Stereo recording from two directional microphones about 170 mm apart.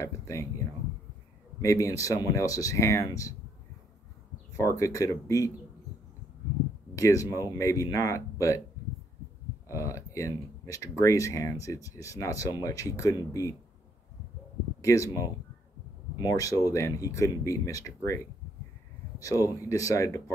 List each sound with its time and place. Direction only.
0.0 s a sound: 20° left (ahead or behind)
1.6 s speech: 20° left (ahead or behind)
4.6 s speech: 20° left (ahead or behind)
7.0 s speech: 20° left (ahead or behind)
9.7 s speech: 20° left (ahead or behind)
14.8 s speech: 20° left (ahead or behind)
16.2 s speech: 20° left (ahead or behind)